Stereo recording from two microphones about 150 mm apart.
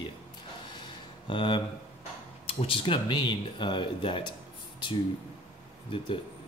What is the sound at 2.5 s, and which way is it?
Speech, 35° left (ahead or behind).